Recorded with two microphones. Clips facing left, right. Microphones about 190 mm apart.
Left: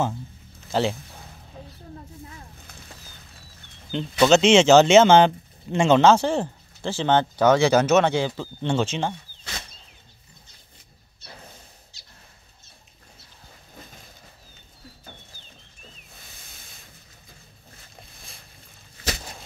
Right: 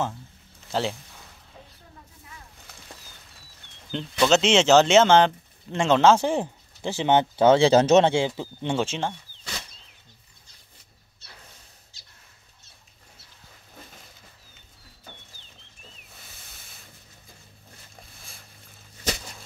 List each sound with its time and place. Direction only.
0.7 s speech: centre (ahead or behind)
3.9 s speech: centre (ahead or behind)
6.2 s speech: 15° right (ahead or behind)